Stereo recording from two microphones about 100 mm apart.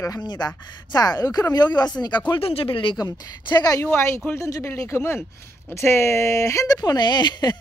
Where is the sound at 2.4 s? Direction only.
70° left (ahead or behind).